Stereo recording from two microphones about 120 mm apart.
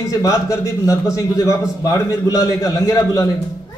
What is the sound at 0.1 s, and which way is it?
A man's voice, 30° left (ahead or behind).